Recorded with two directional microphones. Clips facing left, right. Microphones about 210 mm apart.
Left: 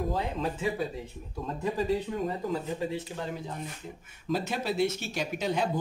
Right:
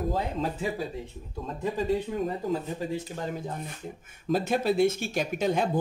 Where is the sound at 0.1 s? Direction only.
40° right (ahead or behind).